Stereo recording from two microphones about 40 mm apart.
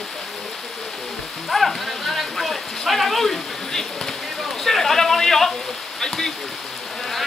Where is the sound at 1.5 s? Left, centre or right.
Centre.